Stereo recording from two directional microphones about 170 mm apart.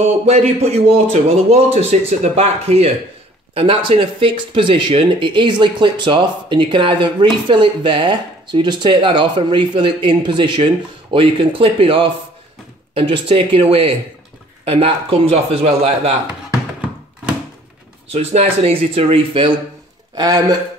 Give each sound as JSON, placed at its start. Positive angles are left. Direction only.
{"t": 0.3, "sound": "a man's voice", "side_deg": -40}
{"t": 18.1, "sound": "a man's voice", "side_deg": -40}
{"t": 20.2, "sound": "speech", "side_deg": -20}